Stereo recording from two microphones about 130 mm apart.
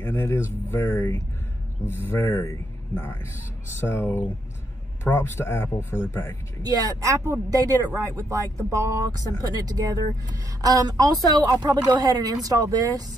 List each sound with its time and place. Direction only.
0.0 s speech: 15° left (ahead or behind)
3.8 s speech: 20° left (ahead or behind)
6.6 s speech: 30° right (ahead or behind)